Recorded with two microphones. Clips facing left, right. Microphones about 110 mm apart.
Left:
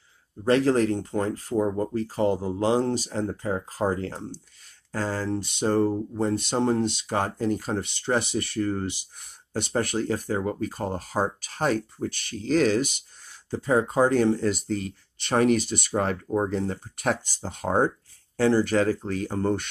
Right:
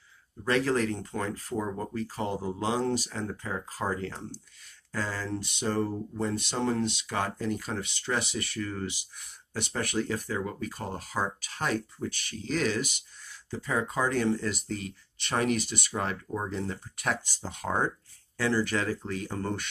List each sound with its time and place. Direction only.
0.5 s speech: 40° left (ahead or behind)